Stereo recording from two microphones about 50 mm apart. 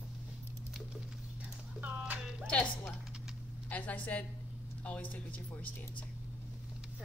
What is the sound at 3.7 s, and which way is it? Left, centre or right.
A child's voice, left.